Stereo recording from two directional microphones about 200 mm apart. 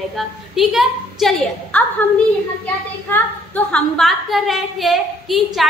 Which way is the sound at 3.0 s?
10° left (ahead or behind).